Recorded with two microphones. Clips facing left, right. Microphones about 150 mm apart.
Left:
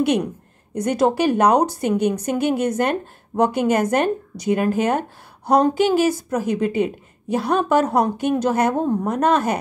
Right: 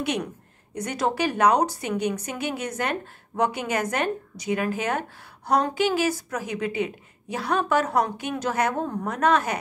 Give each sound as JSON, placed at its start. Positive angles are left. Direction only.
{"t": 0.7, "sound": "a woman's voice", "side_deg": 45}
{"t": 8.6, "sound": "a woman's voice", "side_deg": 20}
{"t": 9.1, "sound": "a woman's voice", "side_deg": 40}